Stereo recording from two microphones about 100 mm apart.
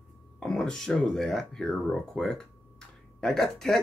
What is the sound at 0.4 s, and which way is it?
Speech, 5° left (ahead or behind).